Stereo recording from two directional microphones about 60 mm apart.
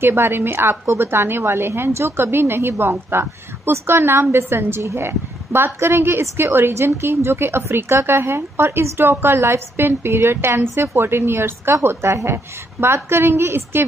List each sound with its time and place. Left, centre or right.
0.0 s a woman's voice: right